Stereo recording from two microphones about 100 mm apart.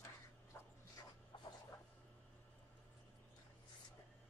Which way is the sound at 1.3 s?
55° left (ahead or behind).